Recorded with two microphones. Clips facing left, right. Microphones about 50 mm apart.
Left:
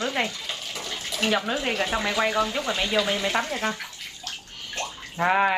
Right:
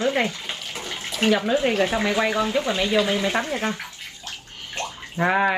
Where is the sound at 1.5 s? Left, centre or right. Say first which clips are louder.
Right 5 dB; right.